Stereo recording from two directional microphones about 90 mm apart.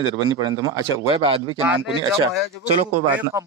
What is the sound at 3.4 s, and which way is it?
Speech, 35° right (ahead or behind).